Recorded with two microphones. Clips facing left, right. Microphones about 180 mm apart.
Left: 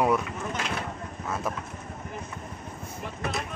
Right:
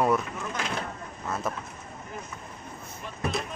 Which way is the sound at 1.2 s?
10° left (ahead or behind).